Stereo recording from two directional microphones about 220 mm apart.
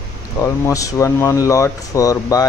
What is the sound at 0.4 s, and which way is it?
Speech, 15° left (ahead or behind).